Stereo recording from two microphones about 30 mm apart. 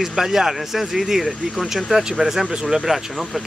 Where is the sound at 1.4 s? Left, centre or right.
Right.